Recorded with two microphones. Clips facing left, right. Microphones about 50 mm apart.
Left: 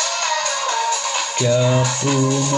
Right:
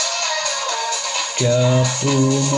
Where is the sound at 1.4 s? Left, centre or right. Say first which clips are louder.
Even; centre; by 2.6 s left.